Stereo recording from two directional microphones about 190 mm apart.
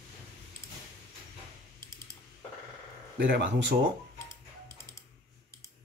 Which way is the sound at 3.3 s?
65° right (ahead or behind).